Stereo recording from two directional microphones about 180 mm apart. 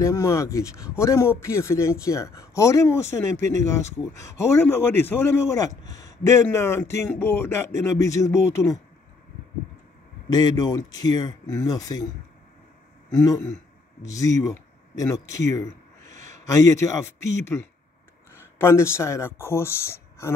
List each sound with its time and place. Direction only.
0.0 s a man's voice: 15° left (ahead or behind)
10.3 s speech: 20° left (ahead or behind)
13.2 s a man's voice: 15° left (ahead or behind)